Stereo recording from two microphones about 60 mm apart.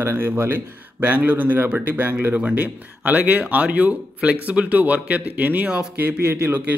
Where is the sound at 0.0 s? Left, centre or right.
Right.